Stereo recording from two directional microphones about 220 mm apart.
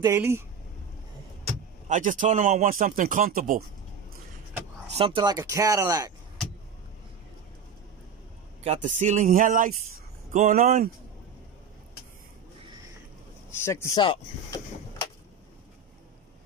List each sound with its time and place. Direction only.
0.0 s speech: 10° right (ahead or behind)
1.9 s speech: 35° right (ahead or behind)
4.9 s speech: 25° right (ahead or behind)
8.6 s speech: 35° right (ahead or behind)
13.5 s speech: 10° left (ahead or behind)